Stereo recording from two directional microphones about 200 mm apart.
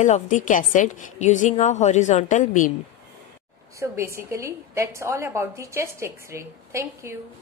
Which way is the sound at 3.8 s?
15° right (ahead or behind).